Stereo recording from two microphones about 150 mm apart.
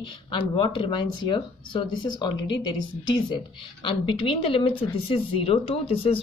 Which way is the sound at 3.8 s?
35° left (ahead or behind).